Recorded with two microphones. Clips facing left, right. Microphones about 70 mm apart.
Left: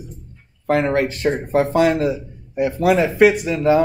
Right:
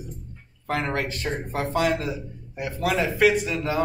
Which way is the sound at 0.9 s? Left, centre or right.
Left.